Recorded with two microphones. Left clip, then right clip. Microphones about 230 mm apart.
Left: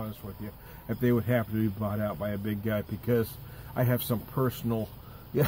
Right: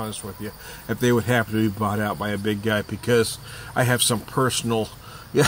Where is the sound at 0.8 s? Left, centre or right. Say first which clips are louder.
Right 7 dB; centre.